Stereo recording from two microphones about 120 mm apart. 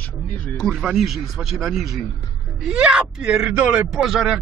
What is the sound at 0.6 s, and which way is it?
Speech, centre (ahead or behind).